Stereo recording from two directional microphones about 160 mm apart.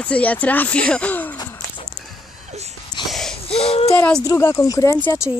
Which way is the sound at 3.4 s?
35° left (ahead or behind).